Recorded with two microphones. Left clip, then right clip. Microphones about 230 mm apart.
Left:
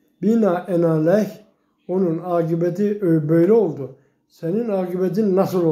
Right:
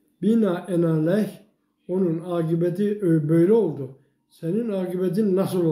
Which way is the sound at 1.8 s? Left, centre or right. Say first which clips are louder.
Left 3 dB; centre.